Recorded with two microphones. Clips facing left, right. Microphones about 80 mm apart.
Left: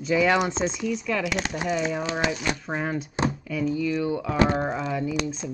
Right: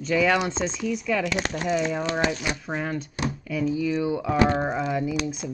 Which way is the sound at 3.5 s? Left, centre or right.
Centre.